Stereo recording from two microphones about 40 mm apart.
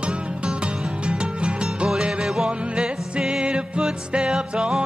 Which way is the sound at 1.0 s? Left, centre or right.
Right.